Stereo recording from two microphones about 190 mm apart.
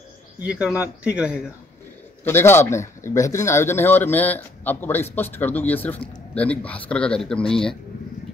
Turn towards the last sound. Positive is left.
turn(degrees=5)  # may be behind; listen again after turning